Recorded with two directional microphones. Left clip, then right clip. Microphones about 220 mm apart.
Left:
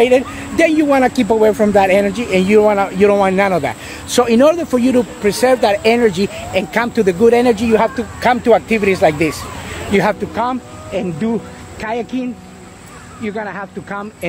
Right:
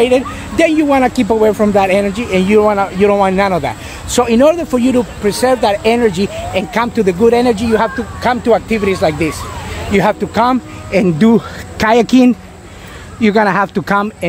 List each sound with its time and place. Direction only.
0.0 s speech: centre (ahead or behind)
10.3 s speech: 45° right (ahead or behind)